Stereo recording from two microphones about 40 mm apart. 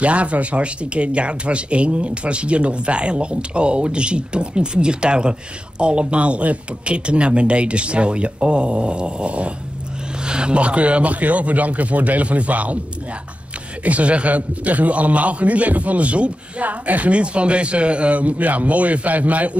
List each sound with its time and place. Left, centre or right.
0.0 s a man's voice: right
13.8 s a man's voice: right